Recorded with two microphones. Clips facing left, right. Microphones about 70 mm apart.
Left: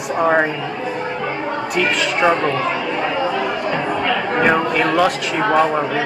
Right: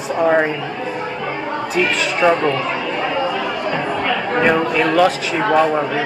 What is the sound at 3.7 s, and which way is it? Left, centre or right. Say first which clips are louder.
Chatter: even; centre.